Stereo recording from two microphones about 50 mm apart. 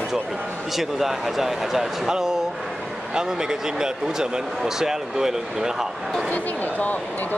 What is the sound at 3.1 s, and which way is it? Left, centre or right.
Speech, centre.